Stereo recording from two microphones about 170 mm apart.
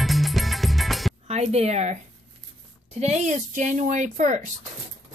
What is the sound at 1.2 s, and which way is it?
A woman's voice, 40° right (ahead or behind).